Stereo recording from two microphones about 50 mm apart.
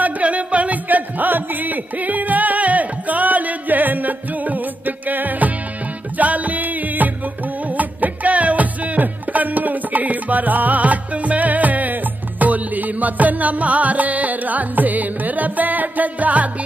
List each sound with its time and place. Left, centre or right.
0.0 s music: right